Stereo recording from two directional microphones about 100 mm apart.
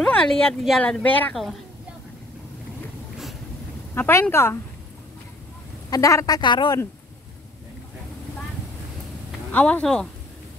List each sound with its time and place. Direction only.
0.0 s speech: 10° left (ahead or behind)
1.3 s a woman's voice: centre (ahead or behind)
3.9 s a woman's voice: 25° left (ahead or behind)
5.9 s a woman's voice: 35° left (ahead or behind); by 6.8 s 50° left (ahead or behind)
9.5 s speech: 15° left (ahead or behind)